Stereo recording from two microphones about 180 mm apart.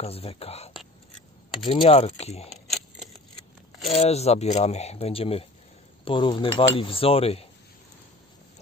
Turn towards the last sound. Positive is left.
turn(degrees=35)  # may be behind; listen again after turning